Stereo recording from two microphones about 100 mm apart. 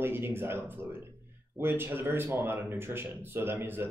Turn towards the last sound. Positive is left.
turn(degrees=-20)  # may be behind; listen again after turning